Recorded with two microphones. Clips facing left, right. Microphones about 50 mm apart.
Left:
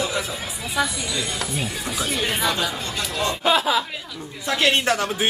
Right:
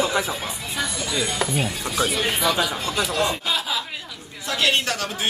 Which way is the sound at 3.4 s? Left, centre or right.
Left.